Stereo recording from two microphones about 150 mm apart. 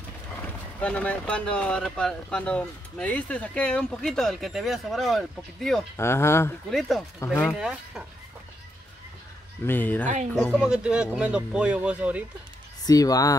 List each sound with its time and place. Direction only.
0.7 s speech: 10° left (ahead or behind)
5.9 s speech: 15° left (ahead or behind)
6.7 s speech: centre (ahead or behind)
7.2 s speech: 20° left (ahead or behind)
7.5 s speech: 5° right (ahead or behind)
9.7 s speech: 10° left (ahead or behind)
10.6 s speech: 5° right (ahead or behind)
12.8 s speech: 25° left (ahead or behind)